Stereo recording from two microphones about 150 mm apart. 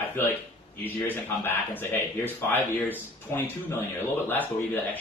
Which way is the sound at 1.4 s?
15° left (ahead or behind).